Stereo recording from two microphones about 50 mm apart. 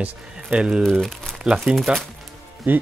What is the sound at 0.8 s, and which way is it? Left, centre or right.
Speech, centre.